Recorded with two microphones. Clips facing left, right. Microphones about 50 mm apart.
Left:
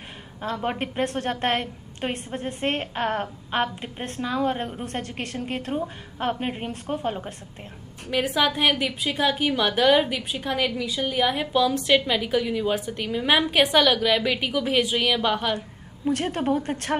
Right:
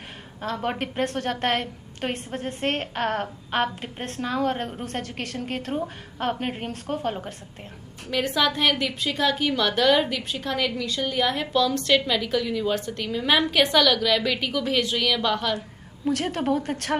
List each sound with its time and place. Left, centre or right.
0.4 s a woman's voice: centre
2.0 s a woman's voice: centre